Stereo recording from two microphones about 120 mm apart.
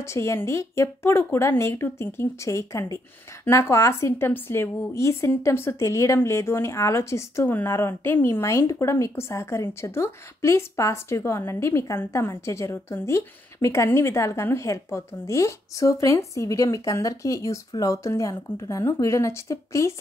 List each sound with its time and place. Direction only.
0.0 s a woman's voice: 25° left (ahead or behind)